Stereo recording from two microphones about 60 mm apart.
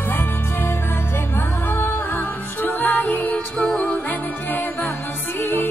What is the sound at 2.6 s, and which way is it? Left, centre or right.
Music, left.